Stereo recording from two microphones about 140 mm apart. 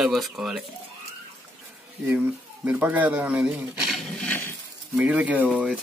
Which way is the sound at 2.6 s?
10° right (ahead or behind).